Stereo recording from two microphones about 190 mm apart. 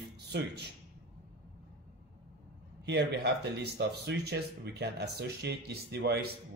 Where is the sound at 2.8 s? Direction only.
60° right (ahead or behind).